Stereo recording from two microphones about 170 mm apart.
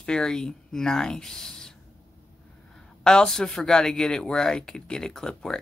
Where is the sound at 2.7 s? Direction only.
5° left (ahead or behind).